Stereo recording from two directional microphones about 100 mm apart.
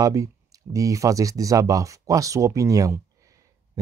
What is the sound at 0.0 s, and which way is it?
Speech, 35° right (ahead or behind).